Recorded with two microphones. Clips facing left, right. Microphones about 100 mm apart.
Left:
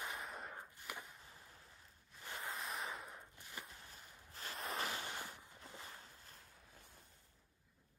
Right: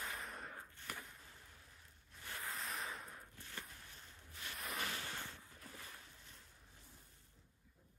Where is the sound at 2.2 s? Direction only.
20° left (ahead or behind).